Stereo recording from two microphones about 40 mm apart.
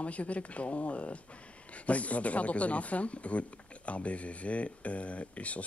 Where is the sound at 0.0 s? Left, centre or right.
Left.